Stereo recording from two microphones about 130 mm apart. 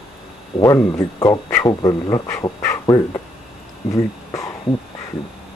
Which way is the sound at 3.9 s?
25° left (ahead or behind).